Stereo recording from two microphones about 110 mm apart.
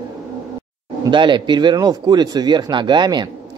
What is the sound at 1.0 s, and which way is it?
Speech, 45° right (ahead or behind).